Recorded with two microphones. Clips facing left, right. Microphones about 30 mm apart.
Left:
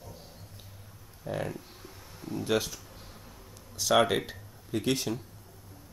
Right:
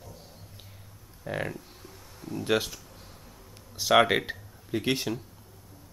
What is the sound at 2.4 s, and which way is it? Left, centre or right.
Speech, centre.